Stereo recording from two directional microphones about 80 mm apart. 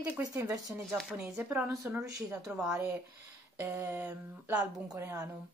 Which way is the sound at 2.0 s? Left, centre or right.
Right.